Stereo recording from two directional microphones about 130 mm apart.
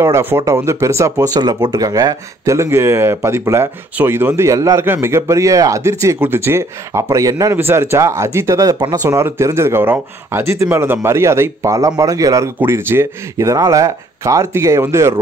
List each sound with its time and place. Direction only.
0.0 s speech: 20° right (ahead or behind)